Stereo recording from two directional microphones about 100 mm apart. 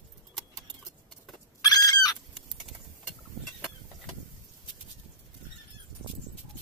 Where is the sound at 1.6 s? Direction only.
40° left (ahead or behind).